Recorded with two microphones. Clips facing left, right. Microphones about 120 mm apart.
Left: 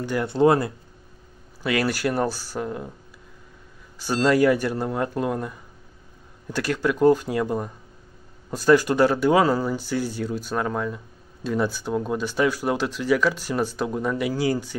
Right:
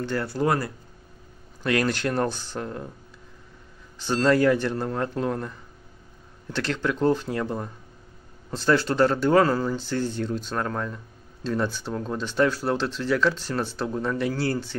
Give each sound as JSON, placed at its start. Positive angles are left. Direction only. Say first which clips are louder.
{"t": 0.0, "sound": "speech", "louder": "left 2 dB", "side_deg": 10}
{"t": 0.3, "sound": "speech", "louder": "left 8 dB", "side_deg": 25}
{"t": 1.6, "sound": "speech", "louder": "left 1 dB", "side_deg": 5}
{"t": 4.0, "sound": "speech", "louder": "left 1 dB", "side_deg": 10}